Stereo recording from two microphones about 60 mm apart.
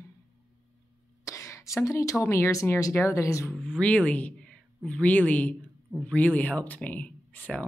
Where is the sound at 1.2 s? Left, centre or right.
Left.